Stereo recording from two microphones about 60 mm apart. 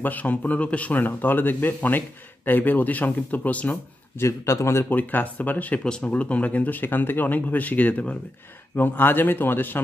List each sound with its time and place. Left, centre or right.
0.0 s a man's voice: left
4.2 s a man's voice: left
4.8 s a man's voice: left
5.9 s a man's voice: centre; by 9.8 s left